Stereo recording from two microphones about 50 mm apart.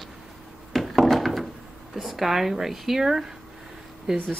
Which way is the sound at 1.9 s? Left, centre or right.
Centre.